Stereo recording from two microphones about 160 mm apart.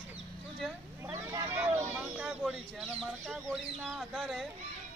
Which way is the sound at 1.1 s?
20° right (ahead or behind).